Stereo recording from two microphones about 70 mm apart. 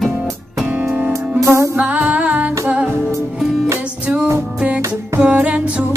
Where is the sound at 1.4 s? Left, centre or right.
Right.